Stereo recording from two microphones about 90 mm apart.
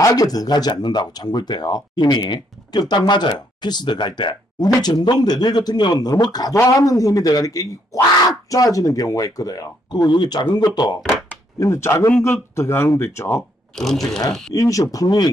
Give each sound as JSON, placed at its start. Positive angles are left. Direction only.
{"t": 0.0, "sound": "speech", "side_deg": 40}
{"t": 6.5, "sound": "speech", "side_deg": 35}
{"t": 11.0, "sound": "speech", "side_deg": 0}
{"t": 11.6, "sound": "speech", "side_deg": 30}
{"t": 13.7, "sound": "speech", "side_deg": 0}
{"t": 14.5, "sound": "speech", "side_deg": 40}